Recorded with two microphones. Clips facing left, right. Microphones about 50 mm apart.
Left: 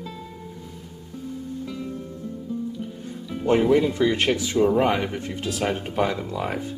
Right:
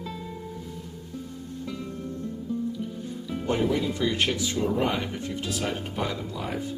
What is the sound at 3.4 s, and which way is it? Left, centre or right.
Speech, left.